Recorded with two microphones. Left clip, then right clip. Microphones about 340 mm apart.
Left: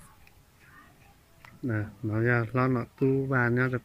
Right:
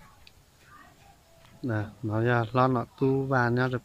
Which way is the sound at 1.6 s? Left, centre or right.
Centre.